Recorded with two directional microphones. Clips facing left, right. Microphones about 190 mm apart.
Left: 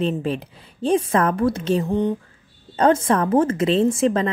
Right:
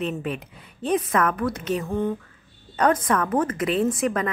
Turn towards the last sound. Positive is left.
turn(degrees=25)  # may be behind; listen again after turning